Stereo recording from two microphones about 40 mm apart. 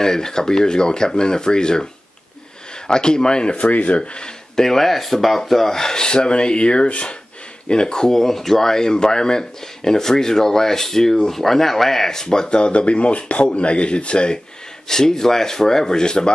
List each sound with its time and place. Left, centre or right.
0.0 s speech: centre
2.9 s speech: centre
4.6 s speech: centre
14.9 s speech: centre